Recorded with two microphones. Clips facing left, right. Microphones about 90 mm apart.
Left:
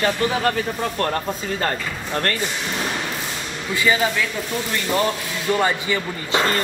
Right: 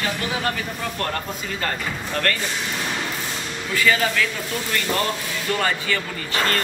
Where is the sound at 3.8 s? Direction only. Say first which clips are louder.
Left 1 dB; 20° left (ahead or behind).